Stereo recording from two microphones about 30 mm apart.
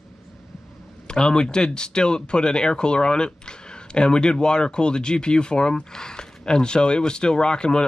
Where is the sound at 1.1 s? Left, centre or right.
Left.